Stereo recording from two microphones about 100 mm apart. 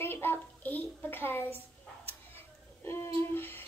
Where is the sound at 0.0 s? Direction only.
20° left (ahead or behind).